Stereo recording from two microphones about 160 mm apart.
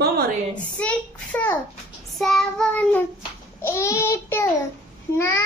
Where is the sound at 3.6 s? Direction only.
15° left (ahead or behind).